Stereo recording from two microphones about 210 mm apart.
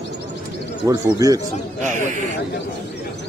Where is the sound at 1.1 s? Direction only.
15° right (ahead or behind).